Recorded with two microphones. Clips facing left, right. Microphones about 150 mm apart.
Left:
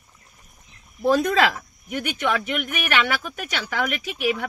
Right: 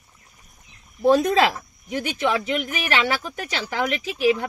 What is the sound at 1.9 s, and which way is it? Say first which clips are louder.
Speech: right 1 dB; 30° right (ahead or behind).